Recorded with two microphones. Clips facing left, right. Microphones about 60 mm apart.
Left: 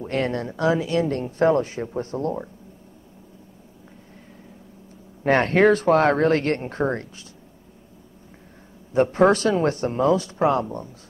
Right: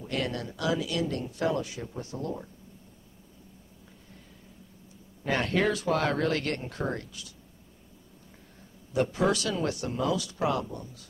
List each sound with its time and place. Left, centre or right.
0.0 s speech: left
5.2 s speech: left
8.9 s speech: left